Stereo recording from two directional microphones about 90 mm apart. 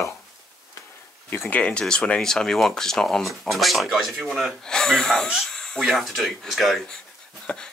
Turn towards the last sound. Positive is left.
turn(degrees=5)  # may be behind; listen again after turning